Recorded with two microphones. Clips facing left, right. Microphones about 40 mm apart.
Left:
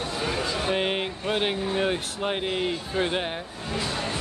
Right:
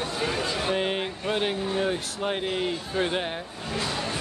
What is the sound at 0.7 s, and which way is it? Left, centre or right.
Speech, centre.